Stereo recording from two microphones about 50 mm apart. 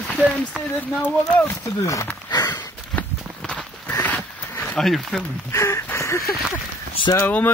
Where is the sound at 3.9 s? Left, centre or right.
Left.